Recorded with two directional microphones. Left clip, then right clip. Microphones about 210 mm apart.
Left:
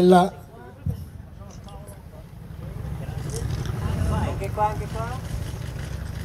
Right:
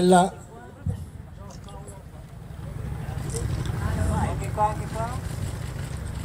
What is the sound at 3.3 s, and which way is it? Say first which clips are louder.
Vehicle: even; 40° left (ahead or behind).